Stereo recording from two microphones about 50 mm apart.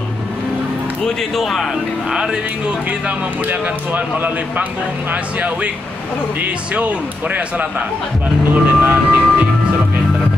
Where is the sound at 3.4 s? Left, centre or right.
Right.